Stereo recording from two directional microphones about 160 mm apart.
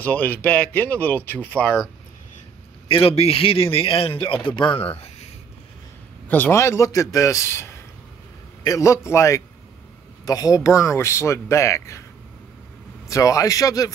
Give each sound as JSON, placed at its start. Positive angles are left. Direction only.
{"t": 0.0, "sound": "speech", "side_deg": 10}
{"t": 2.9, "sound": "a man's voice", "side_deg": 35}
{"t": 6.2, "sound": "speech", "side_deg": 10}
{"t": 13.1, "sound": "speech", "side_deg": 20}